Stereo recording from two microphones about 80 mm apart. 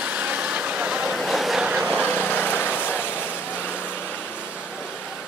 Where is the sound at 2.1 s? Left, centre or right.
Left.